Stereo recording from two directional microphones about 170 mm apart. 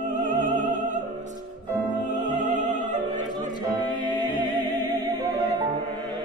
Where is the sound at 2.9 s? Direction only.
45° right (ahead or behind).